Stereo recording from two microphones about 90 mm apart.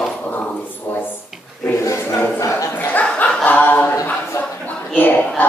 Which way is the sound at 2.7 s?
20° left (ahead or behind).